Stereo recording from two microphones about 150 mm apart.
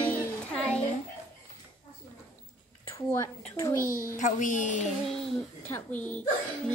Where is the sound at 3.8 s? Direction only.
65° left (ahead or behind).